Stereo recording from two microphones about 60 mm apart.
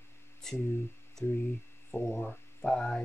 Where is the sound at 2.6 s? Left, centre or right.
Centre.